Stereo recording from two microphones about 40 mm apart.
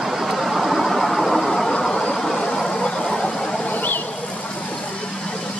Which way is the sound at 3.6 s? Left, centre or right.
Left.